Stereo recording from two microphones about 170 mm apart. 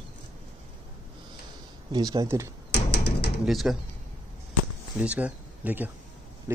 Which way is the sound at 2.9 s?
75° left (ahead or behind).